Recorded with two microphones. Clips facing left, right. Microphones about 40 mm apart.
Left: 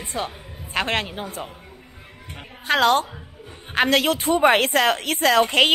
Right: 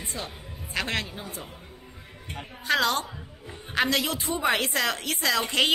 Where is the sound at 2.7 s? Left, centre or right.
Left.